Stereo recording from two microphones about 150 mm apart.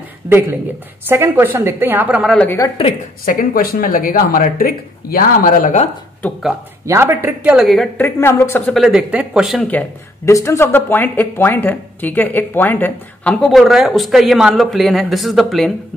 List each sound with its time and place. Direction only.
1.0 s a woman's voice: 15° right (ahead or behind)
2.3 s a woman's voice: 10° left (ahead or behind)
3.3 s speech: 70° left (ahead or behind)
6.9 s a woman's voice: 15° right (ahead or behind); by 7.9 s centre (ahead or behind)
8.0 s a woman's voice: 15° left (ahead or behind)
8.7 s speech: 5° right (ahead or behind)
9.7 s speech: 10° left (ahead or behind)